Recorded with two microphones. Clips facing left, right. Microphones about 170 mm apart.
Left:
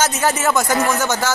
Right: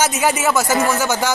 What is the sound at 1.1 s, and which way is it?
Speech, 15° right (ahead or behind).